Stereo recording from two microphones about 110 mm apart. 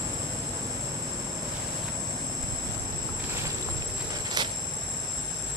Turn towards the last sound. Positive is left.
turn(degrees=-40)  # may be behind; listen again after turning